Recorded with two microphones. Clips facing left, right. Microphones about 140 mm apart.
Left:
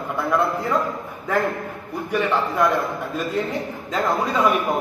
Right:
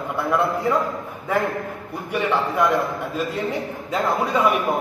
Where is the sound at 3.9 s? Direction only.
10° right (ahead or behind).